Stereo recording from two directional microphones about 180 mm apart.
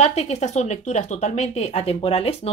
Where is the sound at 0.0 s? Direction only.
35° left (ahead or behind).